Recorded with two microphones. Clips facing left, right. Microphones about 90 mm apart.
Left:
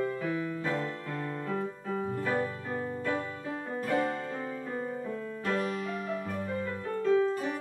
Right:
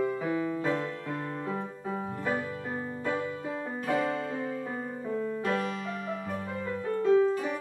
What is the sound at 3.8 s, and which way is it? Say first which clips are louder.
Music: right 1 dB; 5° right (ahead or behind).